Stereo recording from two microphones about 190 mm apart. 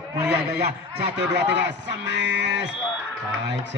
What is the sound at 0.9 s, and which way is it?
Speech, 65° right (ahead or behind).